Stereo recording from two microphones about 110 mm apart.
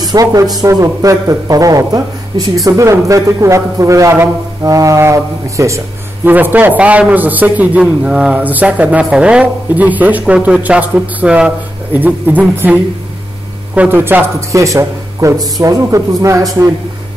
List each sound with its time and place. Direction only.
0.0 s a man's voice: 35° right (ahead or behind)
6.2 s a man's voice: 15° right (ahead or behind)